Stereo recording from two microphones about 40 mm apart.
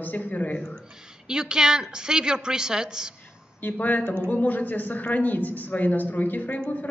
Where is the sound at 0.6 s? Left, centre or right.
Centre.